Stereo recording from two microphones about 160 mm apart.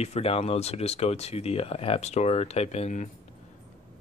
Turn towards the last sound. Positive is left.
turn(degrees=45)  # may be behind; listen again after turning